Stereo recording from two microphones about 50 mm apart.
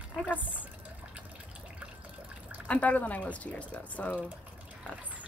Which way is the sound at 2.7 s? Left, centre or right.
Left.